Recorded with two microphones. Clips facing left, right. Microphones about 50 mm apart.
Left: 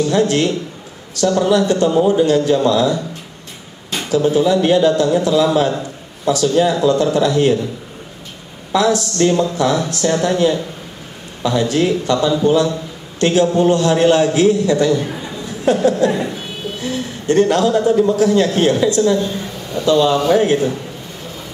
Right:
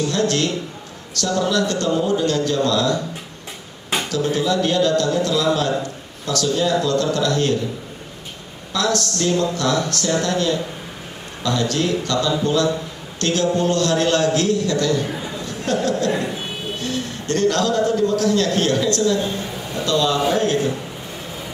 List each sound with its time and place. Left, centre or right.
0.1 s a man's voice: centre
4.1 s a man's voice: centre
8.7 s a man's voice: centre
15.0 s a sound: centre
15.4 s chuckle: centre
16.1 s speech: centre
16.8 s a man's voice: centre
19.3 s a sound: centre
19.9 s a man's voice: centre